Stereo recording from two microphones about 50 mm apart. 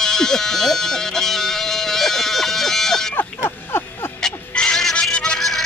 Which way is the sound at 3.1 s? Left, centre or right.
Left.